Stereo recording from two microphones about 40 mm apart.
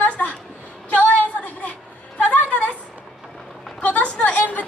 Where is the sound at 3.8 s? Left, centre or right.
Left.